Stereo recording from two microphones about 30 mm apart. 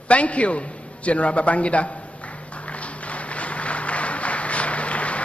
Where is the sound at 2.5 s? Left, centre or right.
Left.